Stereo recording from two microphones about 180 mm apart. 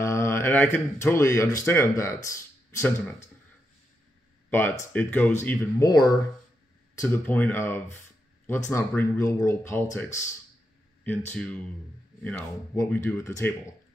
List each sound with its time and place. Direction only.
0.0 s speech: 15° left (ahead or behind)
4.5 s speech: 10° left (ahead or behind)
5.9 s speech: 20° left (ahead or behind)
7.0 s speech: 10° left (ahead or behind)
12.7 s speech: 15° left (ahead or behind)